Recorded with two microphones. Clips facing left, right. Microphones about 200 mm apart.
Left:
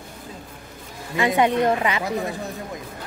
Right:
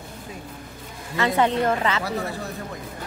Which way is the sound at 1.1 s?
15° left (ahead or behind).